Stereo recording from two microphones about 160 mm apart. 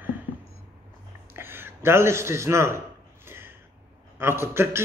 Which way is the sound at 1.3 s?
15° right (ahead or behind).